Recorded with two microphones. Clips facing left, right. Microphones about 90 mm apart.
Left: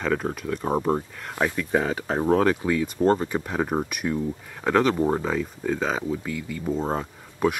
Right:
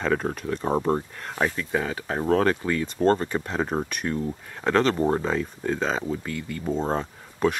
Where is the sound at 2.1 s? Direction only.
10° left (ahead or behind).